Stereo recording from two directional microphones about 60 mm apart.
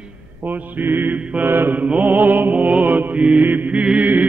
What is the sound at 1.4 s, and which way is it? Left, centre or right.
Mantra, right.